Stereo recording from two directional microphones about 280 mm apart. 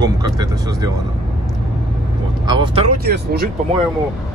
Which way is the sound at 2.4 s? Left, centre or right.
Centre.